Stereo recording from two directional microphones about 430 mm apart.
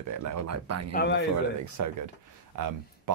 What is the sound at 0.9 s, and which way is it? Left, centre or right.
Speech, left.